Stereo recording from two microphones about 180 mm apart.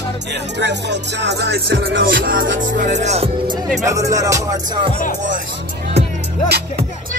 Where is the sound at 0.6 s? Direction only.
75° right (ahead or behind); by 2.5 s 55° right (ahead or behind).